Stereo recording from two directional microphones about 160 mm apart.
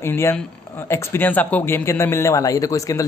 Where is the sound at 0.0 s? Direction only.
15° left (ahead or behind).